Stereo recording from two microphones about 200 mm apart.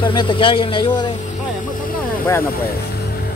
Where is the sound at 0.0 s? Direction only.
25° left (ahead or behind).